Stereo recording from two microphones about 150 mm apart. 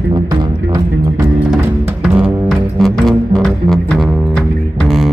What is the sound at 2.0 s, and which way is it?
Music, 5° right (ahead or behind).